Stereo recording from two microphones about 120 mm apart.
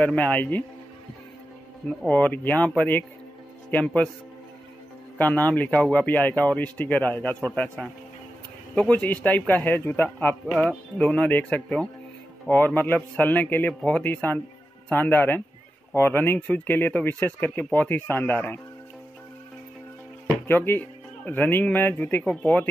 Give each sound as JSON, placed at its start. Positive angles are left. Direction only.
{"t": 0.0, "sound": "speech", "side_deg": 10}
{"t": 2.0, "sound": "speech", "side_deg": 15}
{"t": 5.1, "sound": "speech", "side_deg": 15}
{"t": 20.4, "sound": "speech", "side_deg": 15}